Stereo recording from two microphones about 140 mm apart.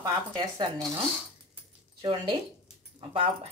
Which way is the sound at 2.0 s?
40° right (ahead or behind).